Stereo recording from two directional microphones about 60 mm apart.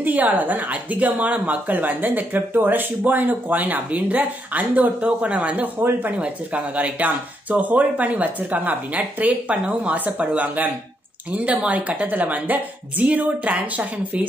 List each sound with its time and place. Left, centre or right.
0.0 s speech: right